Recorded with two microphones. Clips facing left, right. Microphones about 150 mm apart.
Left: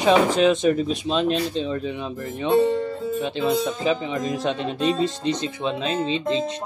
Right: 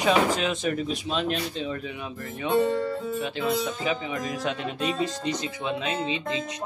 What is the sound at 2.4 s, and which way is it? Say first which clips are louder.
Speech: left 4 dB; 25° left (ahead or behind).